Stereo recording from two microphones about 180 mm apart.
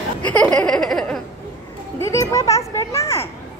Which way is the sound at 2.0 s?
15° left (ahead or behind).